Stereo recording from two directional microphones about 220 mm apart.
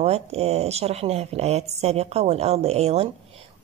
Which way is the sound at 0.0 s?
30° right (ahead or behind).